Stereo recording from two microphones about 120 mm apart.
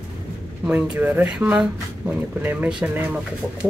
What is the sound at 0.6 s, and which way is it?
Speech, 10° right (ahead or behind).